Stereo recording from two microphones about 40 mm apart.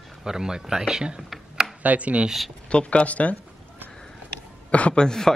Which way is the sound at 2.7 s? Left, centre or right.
Left.